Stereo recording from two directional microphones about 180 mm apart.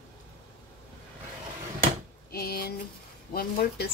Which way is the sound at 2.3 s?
60° left (ahead or behind).